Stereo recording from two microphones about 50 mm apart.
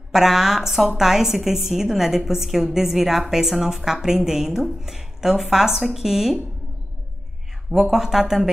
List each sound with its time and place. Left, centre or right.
0.1 s a woman's voice: centre
7.8 s a woman's voice: centre